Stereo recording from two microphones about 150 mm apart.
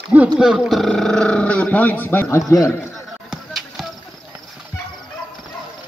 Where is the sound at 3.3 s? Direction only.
Centre (ahead or behind).